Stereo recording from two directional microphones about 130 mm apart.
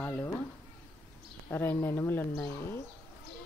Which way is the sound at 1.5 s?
15° left (ahead or behind).